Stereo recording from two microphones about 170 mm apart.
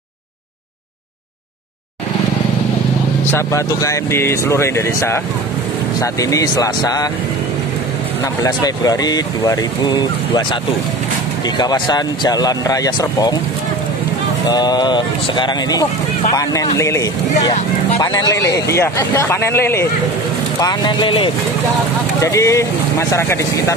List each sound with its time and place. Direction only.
3.3 s speech: 15° left (ahead or behind)
8.4 s speech: 20° left (ahead or behind)
11.5 s speech: 25° left (ahead or behind)
14.5 s speech: 25° left (ahead or behind)
20.6 s speech: 25° left (ahead or behind)
22.2 s speech: 20° left (ahead or behind)